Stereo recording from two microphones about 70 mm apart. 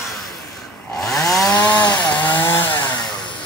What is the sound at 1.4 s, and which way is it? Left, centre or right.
Chainsaw, left.